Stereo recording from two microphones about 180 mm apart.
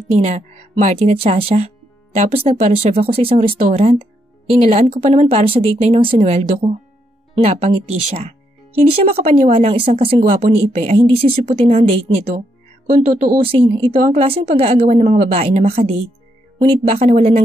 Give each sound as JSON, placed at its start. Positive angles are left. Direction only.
{"t": 0.2, "sound": "speech", "side_deg": -40}
{"t": 10.3, "sound": "speech", "side_deg": -40}
{"t": 13.1, "sound": "speech", "side_deg": -45}
{"t": 13.4, "sound": "speech", "side_deg": -30}